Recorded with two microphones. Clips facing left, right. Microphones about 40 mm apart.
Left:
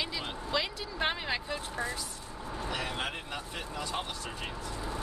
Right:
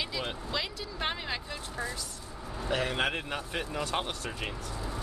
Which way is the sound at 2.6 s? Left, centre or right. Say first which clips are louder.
Right 6 dB; right.